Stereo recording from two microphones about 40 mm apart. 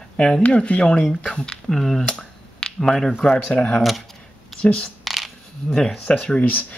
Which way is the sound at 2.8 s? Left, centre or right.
Centre.